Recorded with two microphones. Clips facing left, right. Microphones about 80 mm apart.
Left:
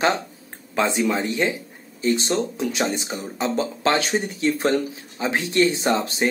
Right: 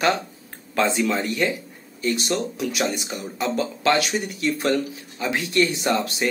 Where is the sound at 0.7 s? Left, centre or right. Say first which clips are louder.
Even; centre.